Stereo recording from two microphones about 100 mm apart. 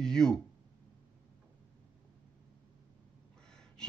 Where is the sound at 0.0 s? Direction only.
5° left (ahead or behind).